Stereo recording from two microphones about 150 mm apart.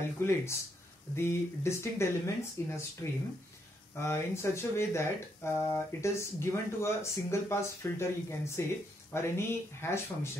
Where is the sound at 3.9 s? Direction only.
15° left (ahead or behind).